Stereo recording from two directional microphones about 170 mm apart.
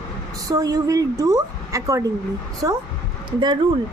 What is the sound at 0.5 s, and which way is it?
Speech, 20° right (ahead or behind).